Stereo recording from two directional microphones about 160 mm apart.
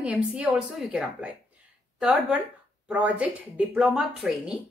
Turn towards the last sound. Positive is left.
turn(degrees=-5)  # may be behind; listen again after turning